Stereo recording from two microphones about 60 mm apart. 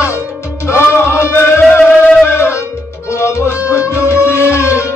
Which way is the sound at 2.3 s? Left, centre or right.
Left.